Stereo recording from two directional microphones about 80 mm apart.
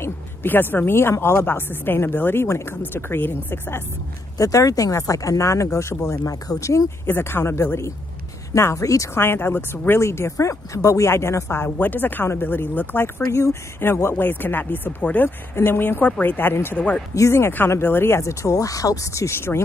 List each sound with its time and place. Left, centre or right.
0.0 s a sound: left
1.2 s speech: left
2.4 s speech: left
2.9 s speech: left
4.4 s speech: left
7.1 s speech: left
9.2 s speech: left
15.5 s speech: left
16.7 s speech: centre
17.1 s speech: left